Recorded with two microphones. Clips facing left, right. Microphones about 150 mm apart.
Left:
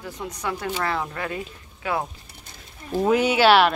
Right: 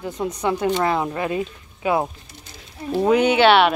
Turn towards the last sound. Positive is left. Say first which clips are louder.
# right 2 dB
turn(degrees=0)  # may be behind; listen again after turning